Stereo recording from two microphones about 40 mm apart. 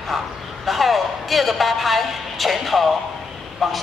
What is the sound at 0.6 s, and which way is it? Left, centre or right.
Speech, centre.